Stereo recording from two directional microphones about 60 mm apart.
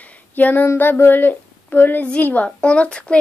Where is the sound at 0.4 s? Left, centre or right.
Left.